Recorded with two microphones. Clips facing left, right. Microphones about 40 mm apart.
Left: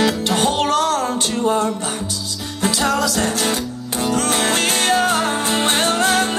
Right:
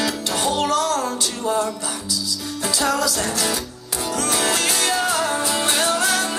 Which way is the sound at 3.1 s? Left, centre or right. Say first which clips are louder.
Left 4 dB; left.